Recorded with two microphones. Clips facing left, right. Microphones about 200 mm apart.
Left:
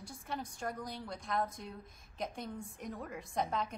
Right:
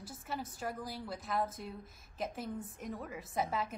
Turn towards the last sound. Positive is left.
turn(degrees=-5)  # may be behind; listen again after turning